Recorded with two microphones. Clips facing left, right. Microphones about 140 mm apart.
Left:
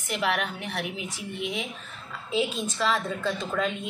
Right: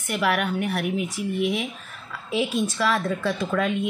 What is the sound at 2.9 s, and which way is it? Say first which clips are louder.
Speech: right 3 dB; 65° right (ahead or behind).